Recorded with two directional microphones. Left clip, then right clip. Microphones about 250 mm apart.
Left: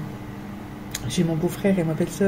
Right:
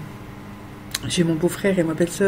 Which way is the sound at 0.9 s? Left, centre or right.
Right.